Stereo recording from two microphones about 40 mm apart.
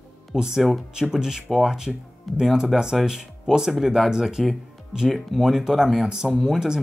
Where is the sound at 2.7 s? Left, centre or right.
Centre.